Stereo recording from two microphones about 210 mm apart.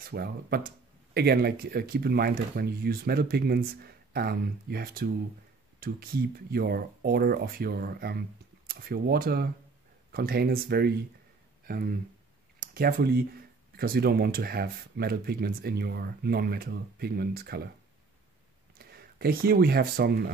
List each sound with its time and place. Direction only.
0.0 s speech: 45° right (ahead or behind)
18.8 s speech: 45° right (ahead or behind)